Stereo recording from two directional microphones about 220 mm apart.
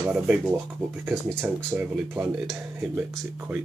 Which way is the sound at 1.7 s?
5° right (ahead or behind).